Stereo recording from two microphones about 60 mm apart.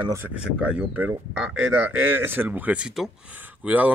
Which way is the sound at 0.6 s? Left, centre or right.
Right.